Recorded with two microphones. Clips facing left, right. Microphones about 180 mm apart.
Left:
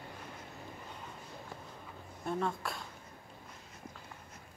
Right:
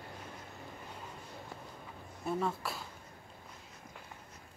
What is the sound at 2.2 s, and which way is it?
Speech, 5° right (ahead or behind).